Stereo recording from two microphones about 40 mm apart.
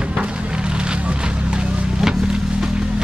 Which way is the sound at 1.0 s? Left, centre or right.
Right.